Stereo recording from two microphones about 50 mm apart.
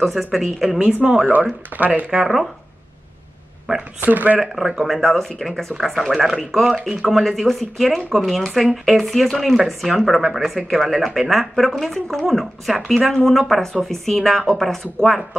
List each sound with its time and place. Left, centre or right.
0.0 s speech: centre
1.7 s speech: right
2.0 s speech: centre
4.0 s speech: right
4.4 s speech: centre